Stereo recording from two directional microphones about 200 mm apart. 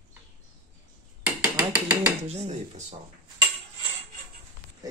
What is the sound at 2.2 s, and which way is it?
Speech, 35° right (ahead or behind).